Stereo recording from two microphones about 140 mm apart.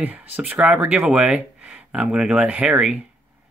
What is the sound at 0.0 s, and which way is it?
Speech, 10° right (ahead or behind).